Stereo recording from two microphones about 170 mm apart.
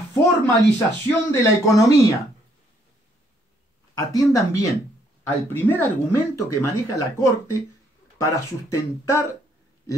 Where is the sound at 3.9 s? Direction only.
20° left (ahead or behind).